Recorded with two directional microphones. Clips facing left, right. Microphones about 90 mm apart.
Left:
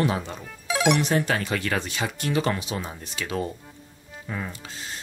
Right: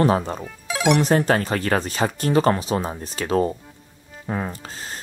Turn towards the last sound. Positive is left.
turn(degrees=-40)  # may be behind; listen again after turning